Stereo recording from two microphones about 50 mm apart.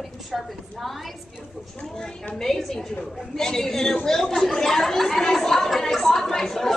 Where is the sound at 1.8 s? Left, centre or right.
Left.